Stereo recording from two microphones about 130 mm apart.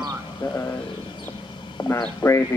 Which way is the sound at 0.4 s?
35° left (ahead or behind).